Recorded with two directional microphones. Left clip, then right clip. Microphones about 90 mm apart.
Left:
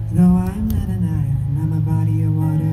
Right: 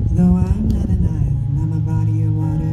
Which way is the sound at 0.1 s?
20° right (ahead or behind).